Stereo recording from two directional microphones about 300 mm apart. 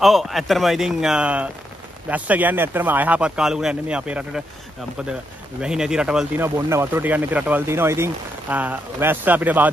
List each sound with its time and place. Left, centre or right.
0.0 s speech: centre
5.6 s speech: centre